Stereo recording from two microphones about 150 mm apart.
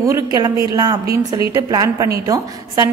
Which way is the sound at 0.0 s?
25° right (ahead or behind).